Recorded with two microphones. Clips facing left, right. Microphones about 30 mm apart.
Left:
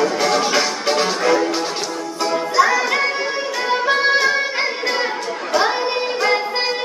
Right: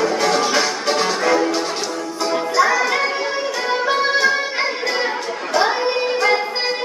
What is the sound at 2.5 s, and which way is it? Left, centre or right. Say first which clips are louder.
Music: left 1 dB; centre.